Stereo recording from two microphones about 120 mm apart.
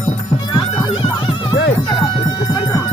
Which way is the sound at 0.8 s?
45° left (ahead or behind).